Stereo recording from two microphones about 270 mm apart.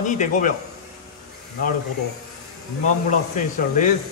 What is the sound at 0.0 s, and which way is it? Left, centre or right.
Speech, left.